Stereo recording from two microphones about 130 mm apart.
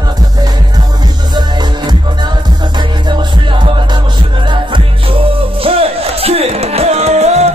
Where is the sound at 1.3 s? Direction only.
35° right (ahead or behind).